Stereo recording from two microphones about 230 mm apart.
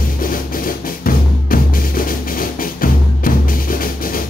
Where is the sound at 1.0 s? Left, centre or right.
Left.